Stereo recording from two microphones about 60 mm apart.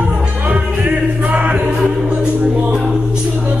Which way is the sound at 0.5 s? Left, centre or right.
Right.